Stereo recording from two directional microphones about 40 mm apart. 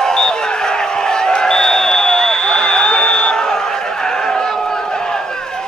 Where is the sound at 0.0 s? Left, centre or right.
Centre.